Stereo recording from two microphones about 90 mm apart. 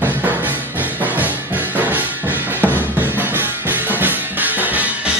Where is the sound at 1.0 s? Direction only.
20° right (ahead or behind).